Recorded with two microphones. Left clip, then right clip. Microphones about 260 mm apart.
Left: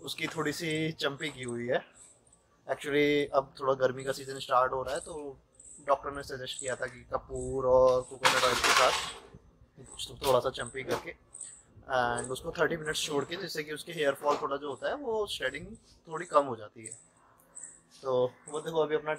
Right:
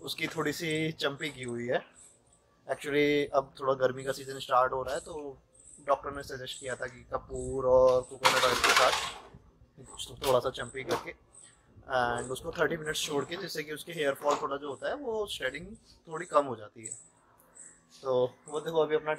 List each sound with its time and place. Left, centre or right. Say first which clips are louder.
0.0 s speech: right 1 dB; centre
10.2 s speech: even; centre
18.0 s speech: even; centre